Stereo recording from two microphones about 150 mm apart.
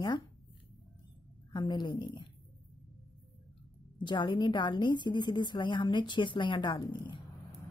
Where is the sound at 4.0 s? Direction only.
30° left (ahead or behind).